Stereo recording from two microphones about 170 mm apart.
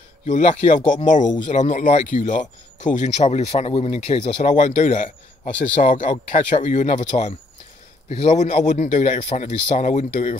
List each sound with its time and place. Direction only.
0.3 s speech: 40° left (ahead or behind)